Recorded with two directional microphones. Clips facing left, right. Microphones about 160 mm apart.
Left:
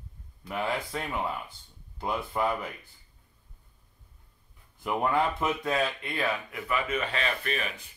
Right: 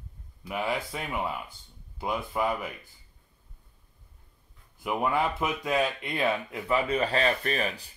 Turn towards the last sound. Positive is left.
turn(degrees=-35)  # may be behind; listen again after turning